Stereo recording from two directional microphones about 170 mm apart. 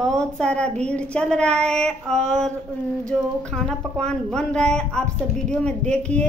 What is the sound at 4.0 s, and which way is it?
Speech, 5° left (ahead or behind).